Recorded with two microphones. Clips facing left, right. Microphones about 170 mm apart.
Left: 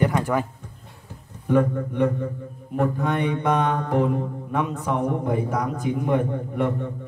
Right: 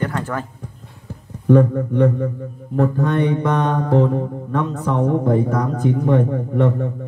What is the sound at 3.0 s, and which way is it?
Speech, 15° left (ahead or behind).